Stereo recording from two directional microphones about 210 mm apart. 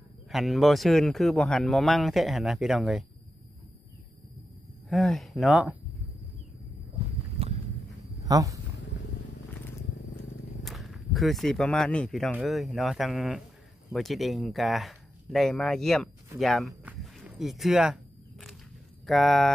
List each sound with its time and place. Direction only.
0.3 s speech: centre (ahead or behind)
4.8 s speech: centre (ahead or behind)
8.2 s speech: 15° right (ahead or behind)
10.6 s speech: centre (ahead or behind)
19.0 s speech: centre (ahead or behind)